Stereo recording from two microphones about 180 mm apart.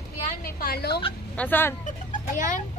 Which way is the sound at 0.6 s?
60° left (ahead or behind).